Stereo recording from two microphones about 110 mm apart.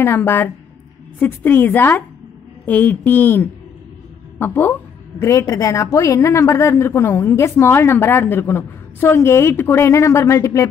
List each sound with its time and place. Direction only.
0.0 s a woman's voice: 20° left (ahead or behind)